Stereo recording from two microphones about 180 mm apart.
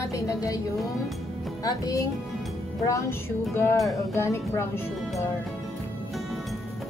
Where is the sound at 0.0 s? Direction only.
20° left (ahead or behind).